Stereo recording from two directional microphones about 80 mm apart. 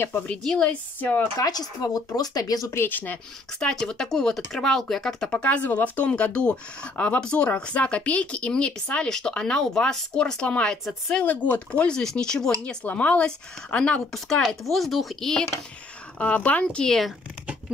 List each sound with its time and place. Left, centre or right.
0.6 s a woman's voice: centre
1.4 s speech: left
2.7 s a woman's voice: left
3.5 s speech: centre
11.2 s speech: centre
16.2 s speech: centre